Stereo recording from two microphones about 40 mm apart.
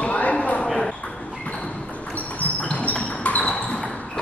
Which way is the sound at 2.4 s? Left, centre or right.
Left.